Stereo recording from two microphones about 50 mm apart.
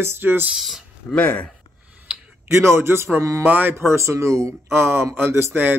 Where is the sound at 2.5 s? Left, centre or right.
Right.